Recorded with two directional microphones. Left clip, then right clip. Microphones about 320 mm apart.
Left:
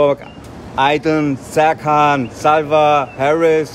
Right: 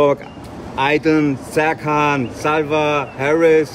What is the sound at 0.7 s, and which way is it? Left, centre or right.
Speech, centre.